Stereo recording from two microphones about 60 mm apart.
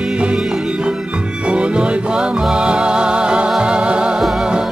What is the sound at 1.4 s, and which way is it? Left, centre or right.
Music, centre.